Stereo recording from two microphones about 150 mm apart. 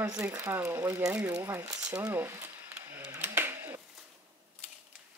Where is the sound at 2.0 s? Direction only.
15° right (ahead or behind).